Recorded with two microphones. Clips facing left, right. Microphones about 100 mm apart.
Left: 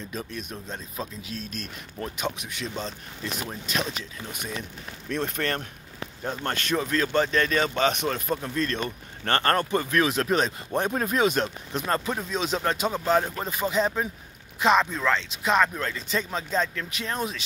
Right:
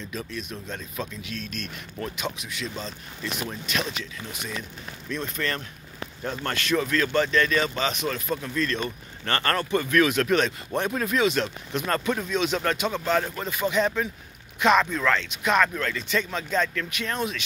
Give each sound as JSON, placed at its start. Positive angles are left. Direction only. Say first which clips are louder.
{"t": 0.1, "sound": "speech", "louder": "right 1 dB", "side_deg": 40}
{"t": 0.7, "sound": "speech", "louder": "right 1 dB", "side_deg": 35}
{"t": 2.1, "sound": "speech", "louder": "left 1 dB", "side_deg": 50}
{"t": 5.1, "sound": "speech", "louder": "left 2 dB", "side_deg": 60}
{"t": 6.8, "sound": "speech", "louder": "even", "side_deg": 30}
{"t": 7.7, "sound": "speech", "louder": "left 3 dB", "side_deg": 55}
{"t": 11.8, "sound": "speech", "louder": "right 1 dB", "side_deg": 25}